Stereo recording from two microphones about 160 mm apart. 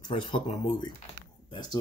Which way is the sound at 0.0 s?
30° left (ahead or behind).